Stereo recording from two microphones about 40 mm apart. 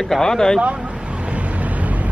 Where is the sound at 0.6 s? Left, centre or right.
Right.